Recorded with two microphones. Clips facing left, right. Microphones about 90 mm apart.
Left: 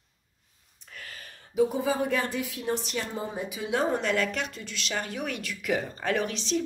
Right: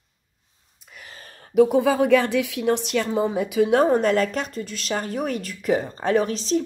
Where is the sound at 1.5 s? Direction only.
70° right (ahead or behind).